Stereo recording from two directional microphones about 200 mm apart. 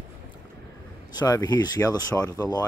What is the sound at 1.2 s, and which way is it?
Speech, 20° left (ahead or behind).